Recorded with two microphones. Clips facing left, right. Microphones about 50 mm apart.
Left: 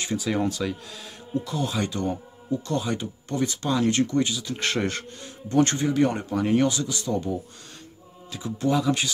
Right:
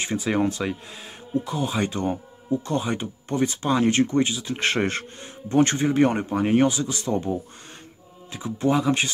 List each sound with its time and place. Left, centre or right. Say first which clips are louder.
0.0 s speech: right 2 dB; right